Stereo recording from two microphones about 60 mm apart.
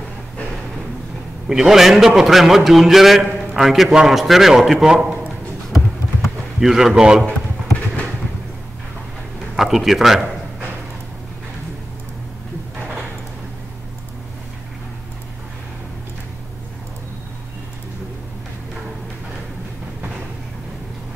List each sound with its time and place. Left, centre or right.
1.5 s a man's voice: centre
6.2 s a man's voice: centre
9.6 s a man's voice: centre